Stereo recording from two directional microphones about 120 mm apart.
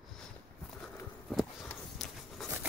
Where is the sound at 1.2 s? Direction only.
Centre (ahead or behind).